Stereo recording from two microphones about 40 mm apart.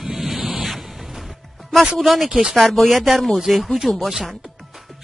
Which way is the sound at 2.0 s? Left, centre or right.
Centre.